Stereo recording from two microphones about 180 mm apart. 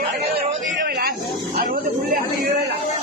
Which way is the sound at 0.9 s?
55° right (ahead or behind).